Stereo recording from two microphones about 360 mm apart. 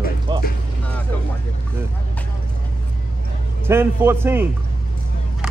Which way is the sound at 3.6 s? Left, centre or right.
Centre.